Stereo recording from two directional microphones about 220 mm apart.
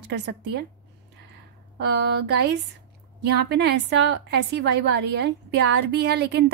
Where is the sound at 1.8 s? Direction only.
50° right (ahead or behind).